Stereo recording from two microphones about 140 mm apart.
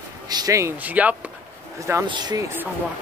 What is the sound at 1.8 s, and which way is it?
Speech, 20° right (ahead or behind).